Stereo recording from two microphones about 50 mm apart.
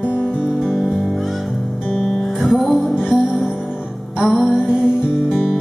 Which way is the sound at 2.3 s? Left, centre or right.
Centre.